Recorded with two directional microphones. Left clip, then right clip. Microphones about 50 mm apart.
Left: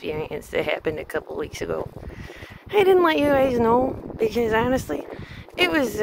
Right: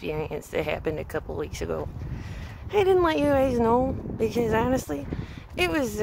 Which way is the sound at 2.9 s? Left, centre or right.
Left.